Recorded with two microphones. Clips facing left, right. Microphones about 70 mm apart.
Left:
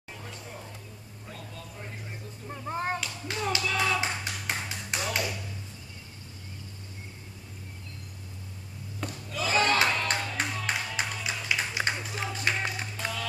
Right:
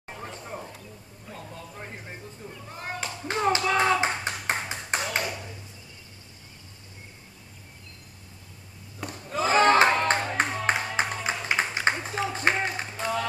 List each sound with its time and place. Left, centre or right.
0.1 s a sound: right
1.3 s music: right
2.7 s clapping: left
3.0 s clapping: right
5.1 s a sound: right
9.3 s music: right